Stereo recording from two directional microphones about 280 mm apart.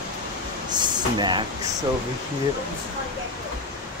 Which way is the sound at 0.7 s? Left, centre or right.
Centre.